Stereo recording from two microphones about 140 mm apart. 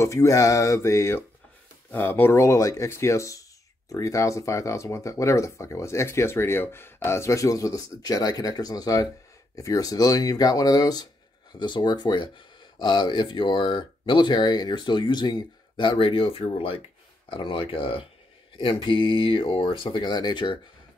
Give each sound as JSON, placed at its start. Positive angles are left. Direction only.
{"t": 0.0, "sound": "speech", "side_deg": 20}